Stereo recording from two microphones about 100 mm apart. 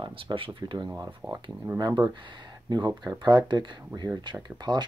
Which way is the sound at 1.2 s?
5° right (ahead or behind).